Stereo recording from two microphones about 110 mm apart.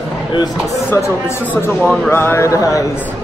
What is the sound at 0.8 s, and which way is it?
A man's voice, 20° left (ahead or behind).